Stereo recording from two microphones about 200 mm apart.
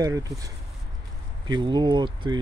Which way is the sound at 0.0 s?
15° right (ahead or behind).